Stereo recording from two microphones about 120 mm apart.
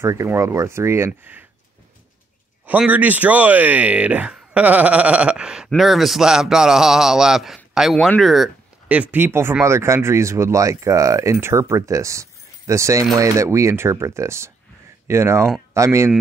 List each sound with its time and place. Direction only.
0.0 s speech: 25° right (ahead or behind)
2.6 s speech: 15° right (ahead or behind)
8.8 s speech: 10° right (ahead or behind)